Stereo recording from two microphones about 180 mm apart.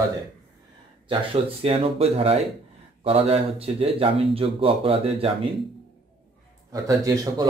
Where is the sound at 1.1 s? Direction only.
30° right (ahead or behind).